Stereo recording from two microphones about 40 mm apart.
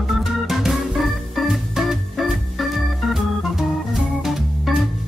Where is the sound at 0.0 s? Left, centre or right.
Centre.